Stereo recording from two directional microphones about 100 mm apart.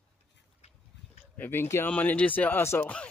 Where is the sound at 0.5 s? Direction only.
90° left.